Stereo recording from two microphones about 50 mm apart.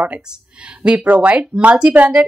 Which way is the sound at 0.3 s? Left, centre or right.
Right.